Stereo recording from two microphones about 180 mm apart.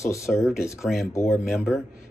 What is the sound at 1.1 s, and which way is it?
Speech, 15° left (ahead or behind).